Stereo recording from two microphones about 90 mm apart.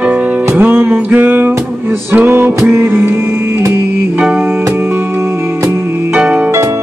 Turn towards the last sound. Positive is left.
turn(degrees=-30)  # may be behind; listen again after turning